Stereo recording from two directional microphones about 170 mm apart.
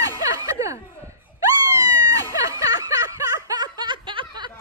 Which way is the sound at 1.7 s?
20° right (ahead or behind).